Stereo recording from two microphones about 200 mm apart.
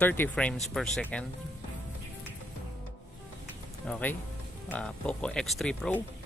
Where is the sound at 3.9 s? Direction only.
5° left (ahead or behind).